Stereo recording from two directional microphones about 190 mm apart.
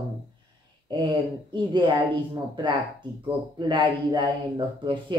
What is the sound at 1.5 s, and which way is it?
Speech, 20° right (ahead or behind).